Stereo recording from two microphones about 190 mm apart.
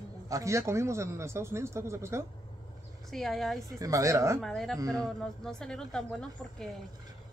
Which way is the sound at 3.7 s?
20° right (ahead or behind).